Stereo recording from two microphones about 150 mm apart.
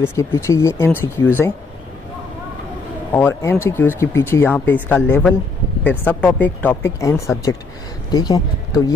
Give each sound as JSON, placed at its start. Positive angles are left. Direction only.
{"t": 0.0, "sound": "speech", "side_deg": 20}
{"t": 3.1, "sound": "speech", "side_deg": 15}